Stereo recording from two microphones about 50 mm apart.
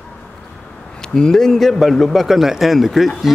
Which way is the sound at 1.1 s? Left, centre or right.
Centre.